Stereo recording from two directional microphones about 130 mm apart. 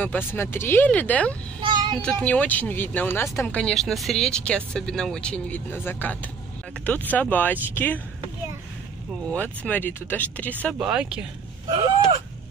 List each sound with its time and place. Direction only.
0.0 s speech: 15° left (ahead or behind)
1.6 s child singing: 35° right (ahead or behind)
2.0 s speech: 10° left (ahead or behind)
9.3 s speech: 10° left (ahead or behind)
10.8 s speech: 5° right (ahead or behind)